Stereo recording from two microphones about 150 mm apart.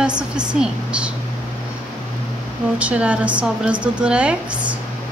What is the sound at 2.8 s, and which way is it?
Speech, 10° right (ahead or behind).